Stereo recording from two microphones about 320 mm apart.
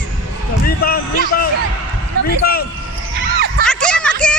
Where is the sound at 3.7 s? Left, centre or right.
Centre.